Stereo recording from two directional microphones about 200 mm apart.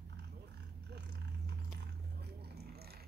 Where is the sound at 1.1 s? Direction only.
55° right (ahead or behind).